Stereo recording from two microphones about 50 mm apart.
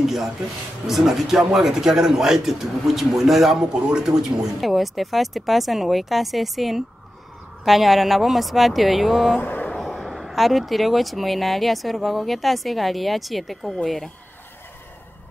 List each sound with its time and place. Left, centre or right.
0.0 s speech: centre
9.4 s speech: left
9.8 s speech: centre